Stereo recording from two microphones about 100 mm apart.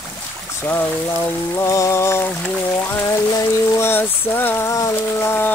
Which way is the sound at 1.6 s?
30° left (ahead or behind).